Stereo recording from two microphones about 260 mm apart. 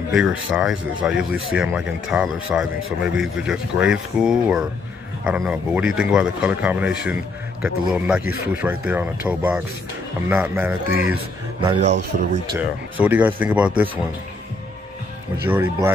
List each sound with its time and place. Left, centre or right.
0.1 s speech: centre
11.6 s a man's voice: centre
12.5 s speech: centre
15.4 s speech: centre